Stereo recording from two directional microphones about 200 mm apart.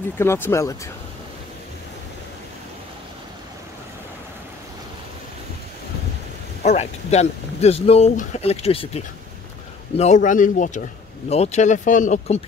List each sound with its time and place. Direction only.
0.2 s speech: 15° left (ahead or behind)
6.6 s speech: 35° left (ahead or behind)